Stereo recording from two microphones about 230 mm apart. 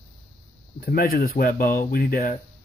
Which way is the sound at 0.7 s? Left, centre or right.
Left.